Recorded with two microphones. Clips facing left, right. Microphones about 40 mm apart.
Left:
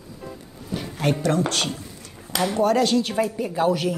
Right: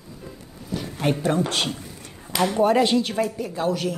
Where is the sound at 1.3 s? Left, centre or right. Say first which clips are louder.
Even; centre.